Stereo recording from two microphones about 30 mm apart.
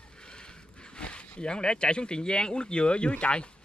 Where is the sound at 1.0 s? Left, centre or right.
Left.